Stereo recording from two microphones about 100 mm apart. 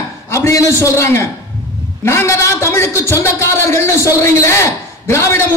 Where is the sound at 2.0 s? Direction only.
25° left (ahead or behind).